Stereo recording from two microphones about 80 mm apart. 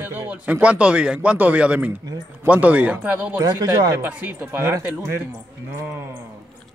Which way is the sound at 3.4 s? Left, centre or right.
Right.